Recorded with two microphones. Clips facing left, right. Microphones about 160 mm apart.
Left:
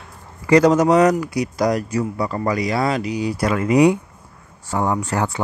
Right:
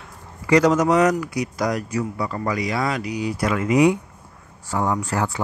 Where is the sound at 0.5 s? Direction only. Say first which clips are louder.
Left 3 dB; 30° left (ahead or behind).